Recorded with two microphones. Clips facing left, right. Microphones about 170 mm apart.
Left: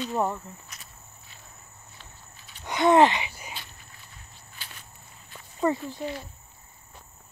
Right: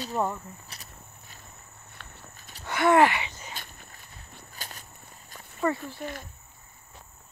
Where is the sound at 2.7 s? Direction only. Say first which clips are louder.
Left 2 dB; 20° left (ahead or behind).